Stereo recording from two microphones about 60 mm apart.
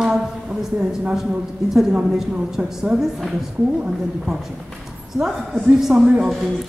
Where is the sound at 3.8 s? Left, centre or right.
Centre.